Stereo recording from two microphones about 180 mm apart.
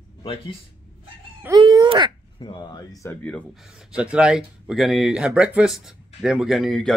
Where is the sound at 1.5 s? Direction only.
25° right (ahead or behind).